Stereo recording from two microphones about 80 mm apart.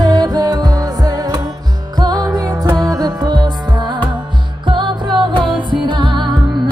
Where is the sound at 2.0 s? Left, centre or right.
Right.